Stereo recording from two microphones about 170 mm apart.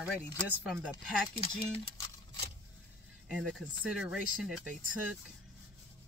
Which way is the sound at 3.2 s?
Centre (ahead or behind).